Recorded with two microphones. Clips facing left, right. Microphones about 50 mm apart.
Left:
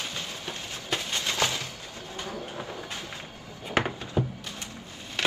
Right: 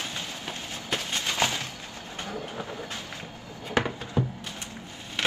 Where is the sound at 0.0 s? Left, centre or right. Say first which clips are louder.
Even; right.